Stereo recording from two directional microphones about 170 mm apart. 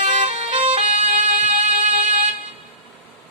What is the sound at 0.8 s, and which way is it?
Emergency vehicle, 45° right (ahead or behind).